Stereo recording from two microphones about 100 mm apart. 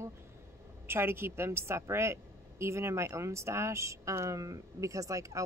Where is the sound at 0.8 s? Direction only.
25° right (ahead or behind).